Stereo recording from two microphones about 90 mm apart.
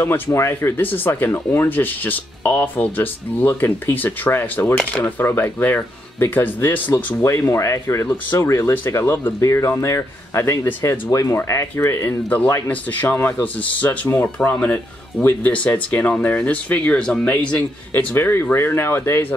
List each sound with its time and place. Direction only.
0.0 s speech: 30° left (ahead or behind)
4.7 s speech: 10° left (ahead or behind)
5.2 s speech: 20° left (ahead or behind)
7.2 s speech: 35° left (ahead or behind); by 17.4 s 15° left (ahead or behind)
17.5 s speech: 25° left (ahead or behind)